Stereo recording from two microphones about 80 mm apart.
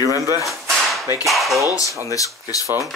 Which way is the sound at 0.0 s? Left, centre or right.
Right.